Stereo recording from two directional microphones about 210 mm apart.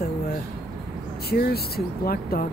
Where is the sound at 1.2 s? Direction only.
45° left (ahead or behind).